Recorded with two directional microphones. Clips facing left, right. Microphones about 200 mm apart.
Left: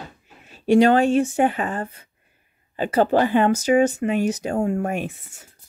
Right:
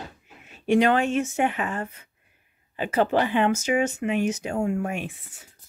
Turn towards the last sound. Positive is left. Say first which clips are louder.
# left 5 dB
turn(degrees=40)  # may be behind; listen again after turning